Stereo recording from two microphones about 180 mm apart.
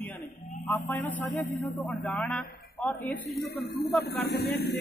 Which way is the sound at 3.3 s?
60° left (ahead or behind).